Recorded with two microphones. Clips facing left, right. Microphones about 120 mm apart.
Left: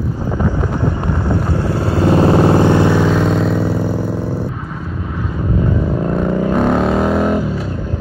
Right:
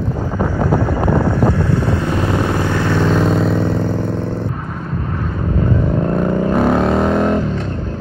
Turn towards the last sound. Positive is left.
turn(degrees=5)  # may be behind; listen again after turning